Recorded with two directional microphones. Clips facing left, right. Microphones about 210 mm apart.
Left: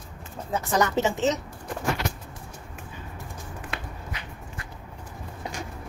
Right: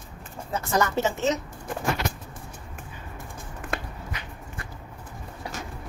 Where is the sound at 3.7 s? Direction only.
45° right (ahead or behind).